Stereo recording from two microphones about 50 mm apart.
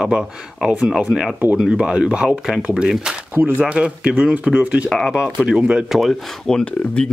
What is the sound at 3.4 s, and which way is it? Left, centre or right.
Speech, right.